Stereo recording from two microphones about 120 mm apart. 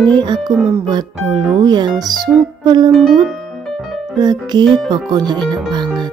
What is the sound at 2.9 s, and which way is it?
Speech, centre (ahead or behind).